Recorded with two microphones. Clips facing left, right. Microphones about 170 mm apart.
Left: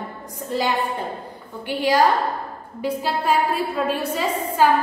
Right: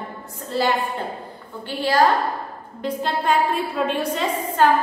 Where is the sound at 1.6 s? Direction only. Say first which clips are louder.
Left 2 dB; 15° left (ahead or behind).